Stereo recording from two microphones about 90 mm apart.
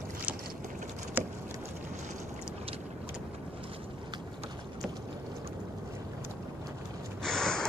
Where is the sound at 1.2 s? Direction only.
20° right (ahead or behind).